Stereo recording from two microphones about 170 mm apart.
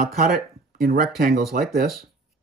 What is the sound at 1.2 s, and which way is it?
Speech, 65° right (ahead or behind).